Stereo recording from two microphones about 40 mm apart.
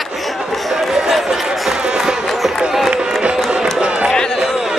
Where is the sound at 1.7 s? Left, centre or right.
Centre.